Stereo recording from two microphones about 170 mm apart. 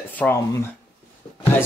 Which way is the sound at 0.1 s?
10° left (ahead or behind).